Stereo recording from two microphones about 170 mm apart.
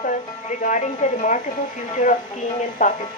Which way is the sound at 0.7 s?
50° left (ahead or behind).